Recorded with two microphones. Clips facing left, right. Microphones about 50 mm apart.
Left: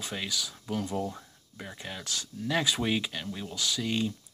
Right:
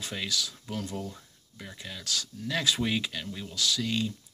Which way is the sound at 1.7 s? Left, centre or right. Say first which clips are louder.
Right 1 dB; left.